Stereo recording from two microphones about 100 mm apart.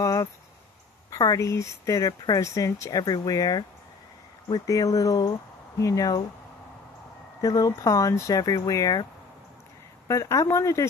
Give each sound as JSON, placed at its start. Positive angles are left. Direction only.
{"t": 0.0, "sound": "speech", "side_deg": 35}
{"t": 4.6, "sound": "speech", "side_deg": 35}
{"t": 7.4, "sound": "speech", "side_deg": 35}
{"t": 10.0, "sound": "speech", "side_deg": 30}